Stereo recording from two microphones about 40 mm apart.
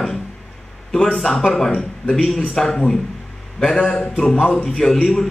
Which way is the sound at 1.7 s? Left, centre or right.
Left.